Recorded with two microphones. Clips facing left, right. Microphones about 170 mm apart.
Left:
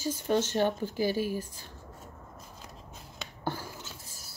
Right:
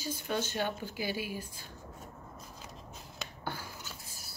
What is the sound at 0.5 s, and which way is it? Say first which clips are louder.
Speech: left 7 dB; 40° left (ahead or behind).